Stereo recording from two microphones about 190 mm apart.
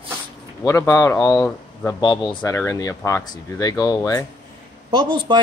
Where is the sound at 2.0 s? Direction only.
20° left (ahead or behind).